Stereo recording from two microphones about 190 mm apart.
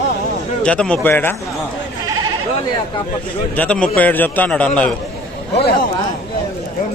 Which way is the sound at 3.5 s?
5° left (ahead or behind).